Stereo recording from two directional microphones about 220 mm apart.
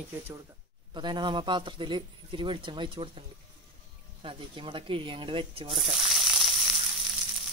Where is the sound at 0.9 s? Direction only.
20° right (ahead or behind).